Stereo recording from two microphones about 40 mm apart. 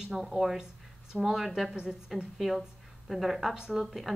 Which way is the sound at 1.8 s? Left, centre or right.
Centre.